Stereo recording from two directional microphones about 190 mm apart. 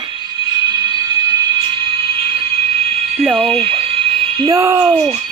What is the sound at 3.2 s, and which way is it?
Music, 5° right (ahead or behind).